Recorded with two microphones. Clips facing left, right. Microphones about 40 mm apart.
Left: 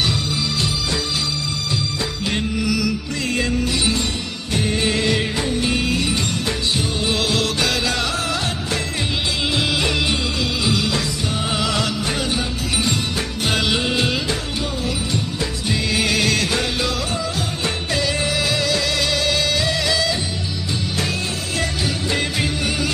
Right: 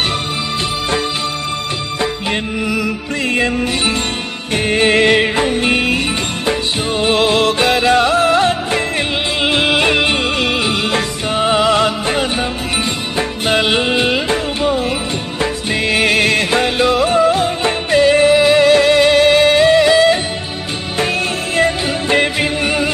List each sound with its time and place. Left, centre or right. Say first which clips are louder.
4.6 s music: right 8 dB; right
7.1 s music: right 9 dB; right
13.5 s music: right 6 dB; right
21.5 s music: right 9 dB; right